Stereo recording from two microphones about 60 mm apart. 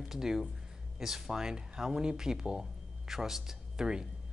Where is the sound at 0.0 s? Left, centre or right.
Centre.